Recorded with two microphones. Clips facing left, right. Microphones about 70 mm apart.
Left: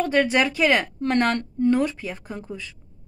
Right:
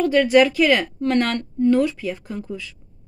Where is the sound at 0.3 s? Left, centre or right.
Centre.